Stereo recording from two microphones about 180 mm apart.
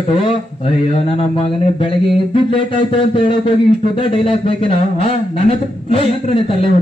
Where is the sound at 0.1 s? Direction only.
30° left (ahead or behind).